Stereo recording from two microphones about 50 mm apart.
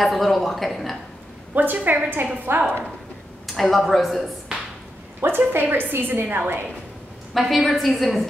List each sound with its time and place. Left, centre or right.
0.0 s a woman's voice: centre
1.5 s a woman's voice: right
3.4 s a woman's voice: centre
5.2 s a woman's voice: right
7.3 s a woman's voice: centre